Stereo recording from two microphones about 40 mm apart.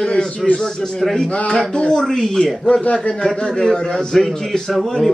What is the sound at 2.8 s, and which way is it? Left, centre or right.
Speech, left.